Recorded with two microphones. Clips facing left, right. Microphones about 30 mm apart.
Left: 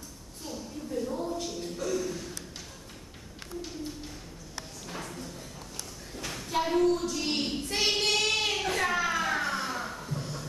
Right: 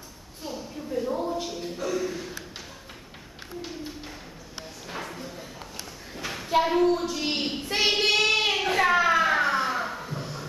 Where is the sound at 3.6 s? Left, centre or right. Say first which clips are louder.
Right 2 dB; right.